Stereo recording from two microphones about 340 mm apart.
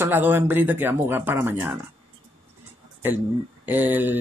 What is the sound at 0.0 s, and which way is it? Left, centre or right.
Speech, centre.